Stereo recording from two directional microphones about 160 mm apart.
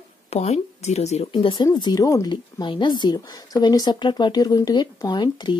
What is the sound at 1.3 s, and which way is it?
A woman's voice, 30° left (ahead or behind).